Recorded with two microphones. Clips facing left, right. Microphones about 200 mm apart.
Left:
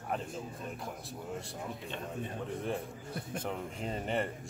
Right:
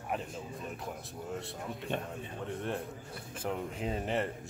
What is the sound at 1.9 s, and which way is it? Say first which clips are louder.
Speech: right 9 dB; 55° right (ahead or behind).